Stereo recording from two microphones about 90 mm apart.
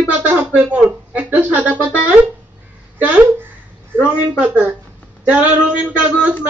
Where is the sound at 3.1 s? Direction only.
20° right (ahead or behind).